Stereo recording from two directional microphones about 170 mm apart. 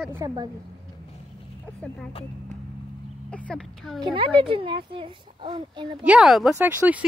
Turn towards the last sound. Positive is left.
turn(degrees=-10)  # may be behind; listen again after turning